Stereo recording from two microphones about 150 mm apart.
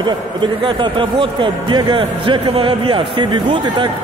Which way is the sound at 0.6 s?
35° right (ahead or behind).